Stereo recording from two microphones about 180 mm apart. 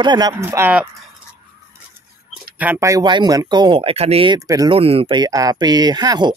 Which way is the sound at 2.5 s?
10° right (ahead or behind).